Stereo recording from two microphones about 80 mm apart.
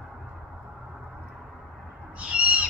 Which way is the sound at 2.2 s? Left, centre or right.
Centre.